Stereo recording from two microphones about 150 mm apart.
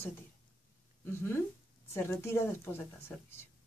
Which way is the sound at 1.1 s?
15° left (ahead or behind).